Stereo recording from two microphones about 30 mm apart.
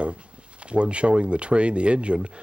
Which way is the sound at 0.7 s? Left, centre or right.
Right.